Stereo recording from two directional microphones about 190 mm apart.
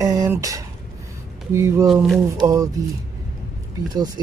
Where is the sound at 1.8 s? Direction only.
Centre (ahead or behind).